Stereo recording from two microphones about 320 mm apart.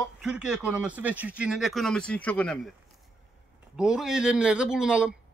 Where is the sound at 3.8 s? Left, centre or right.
Centre.